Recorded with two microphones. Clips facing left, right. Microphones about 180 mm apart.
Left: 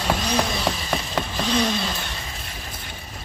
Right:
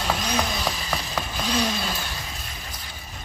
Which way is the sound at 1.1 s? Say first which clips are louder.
Left 3 dB; 5° right (ahead or behind).